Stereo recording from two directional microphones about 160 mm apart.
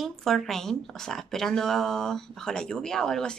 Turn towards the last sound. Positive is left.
turn(degrees=5)  # may be behind; listen again after turning